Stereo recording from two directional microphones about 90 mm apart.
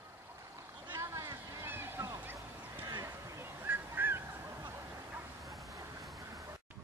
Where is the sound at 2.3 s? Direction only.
25° right (ahead or behind).